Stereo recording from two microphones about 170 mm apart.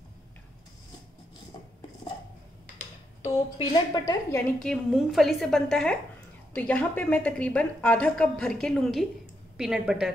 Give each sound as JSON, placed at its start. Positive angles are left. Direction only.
{"t": 3.5, "sound": "a woman's voice", "side_deg": 25}
{"t": 4.6, "sound": "a woman's voice", "side_deg": 0}